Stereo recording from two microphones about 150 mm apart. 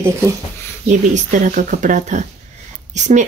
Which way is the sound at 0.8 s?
55° right (ahead or behind).